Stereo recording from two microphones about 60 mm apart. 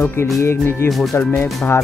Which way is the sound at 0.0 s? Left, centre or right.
Left.